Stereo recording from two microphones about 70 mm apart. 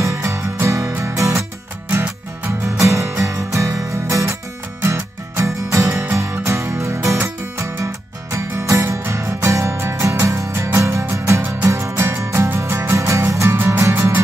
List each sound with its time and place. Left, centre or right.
0.0 s music: right
1.9 s music: right
2.8 s music: right